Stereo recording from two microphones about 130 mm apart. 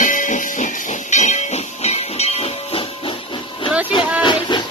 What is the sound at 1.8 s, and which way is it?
Steam, 55° left (ahead or behind).